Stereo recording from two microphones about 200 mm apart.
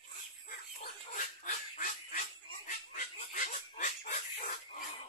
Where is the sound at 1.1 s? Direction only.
40° left (ahead or behind).